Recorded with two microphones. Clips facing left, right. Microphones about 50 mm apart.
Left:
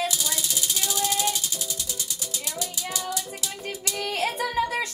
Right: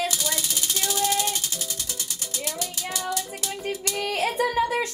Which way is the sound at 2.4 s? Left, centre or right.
Right.